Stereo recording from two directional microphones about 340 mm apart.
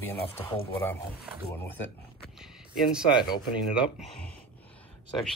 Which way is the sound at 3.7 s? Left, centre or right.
Centre.